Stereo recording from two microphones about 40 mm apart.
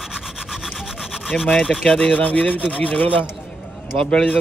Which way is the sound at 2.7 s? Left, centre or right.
Left.